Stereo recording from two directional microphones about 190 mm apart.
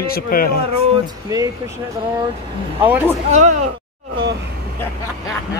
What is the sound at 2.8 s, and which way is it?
Speech, 10° right (ahead or behind).